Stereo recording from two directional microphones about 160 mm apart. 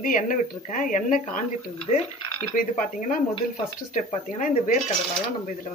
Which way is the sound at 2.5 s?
55° left (ahead or behind).